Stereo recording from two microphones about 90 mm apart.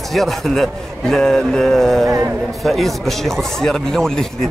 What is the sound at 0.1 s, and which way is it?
Speech, centre (ahead or behind).